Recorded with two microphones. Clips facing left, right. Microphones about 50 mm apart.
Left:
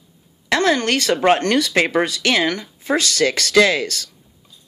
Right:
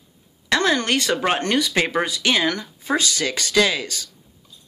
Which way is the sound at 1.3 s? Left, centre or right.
Left.